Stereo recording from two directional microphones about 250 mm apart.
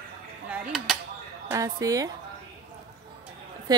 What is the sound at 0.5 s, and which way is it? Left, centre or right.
Mechanisms, centre.